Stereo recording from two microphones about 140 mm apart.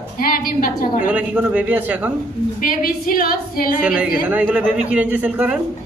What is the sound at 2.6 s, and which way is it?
A woman's voice, 90° left.